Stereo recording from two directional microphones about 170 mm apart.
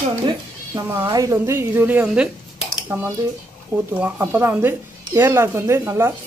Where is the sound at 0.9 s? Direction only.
15° right (ahead or behind).